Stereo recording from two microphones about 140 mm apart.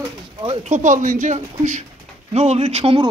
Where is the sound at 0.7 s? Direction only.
60° right (ahead or behind).